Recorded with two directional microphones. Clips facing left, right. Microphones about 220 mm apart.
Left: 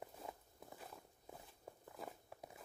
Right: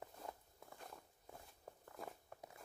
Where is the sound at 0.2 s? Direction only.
5° left (ahead or behind).